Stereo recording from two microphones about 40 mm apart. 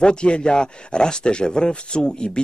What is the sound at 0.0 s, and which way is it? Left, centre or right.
Speech, left.